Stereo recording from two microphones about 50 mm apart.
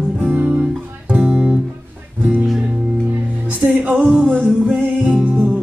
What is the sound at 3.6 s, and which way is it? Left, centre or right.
Music, right.